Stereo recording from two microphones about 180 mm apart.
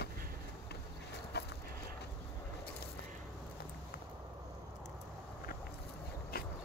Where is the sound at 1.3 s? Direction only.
65° left (ahead or behind).